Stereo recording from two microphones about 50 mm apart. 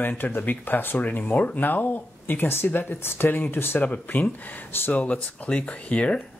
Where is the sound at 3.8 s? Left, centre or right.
Left.